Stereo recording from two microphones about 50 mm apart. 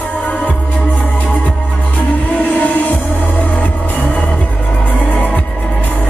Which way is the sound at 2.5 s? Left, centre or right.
Left.